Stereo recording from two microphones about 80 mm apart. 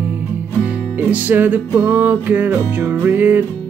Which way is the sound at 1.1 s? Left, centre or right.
Right.